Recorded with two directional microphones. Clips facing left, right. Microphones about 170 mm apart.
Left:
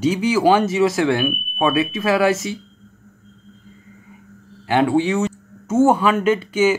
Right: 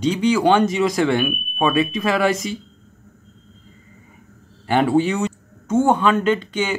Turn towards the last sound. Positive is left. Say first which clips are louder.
# left 4 dB
turn(degrees=5)  # may be behind; listen again after turning